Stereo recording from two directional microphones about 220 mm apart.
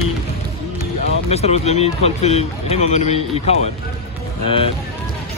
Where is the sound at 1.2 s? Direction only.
30° left (ahead or behind).